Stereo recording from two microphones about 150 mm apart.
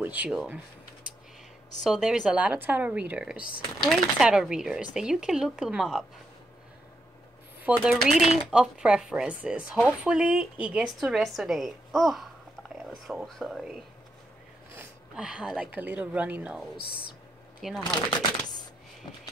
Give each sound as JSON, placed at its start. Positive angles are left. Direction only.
{"t": 0.0, "sound": "speech", "side_deg": -10}
{"t": 1.8, "sound": "speech", "side_deg": 0}
{"t": 7.6, "sound": "speech", "side_deg": -5}
{"t": 15.1, "sound": "speech", "side_deg": -5}
{"t": 16.7, "sound": "speech", "side_deg": 90}
{"t": 17.7, "sound": "speech", "side_deg": 30}